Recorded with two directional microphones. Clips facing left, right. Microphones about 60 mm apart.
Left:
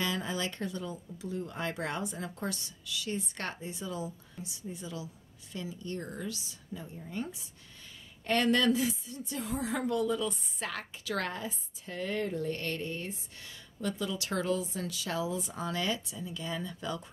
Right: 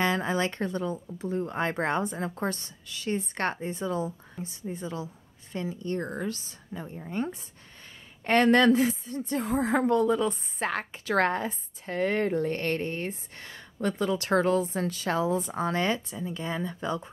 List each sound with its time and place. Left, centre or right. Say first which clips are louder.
0.0 s a woman's voice: right 7 dB; right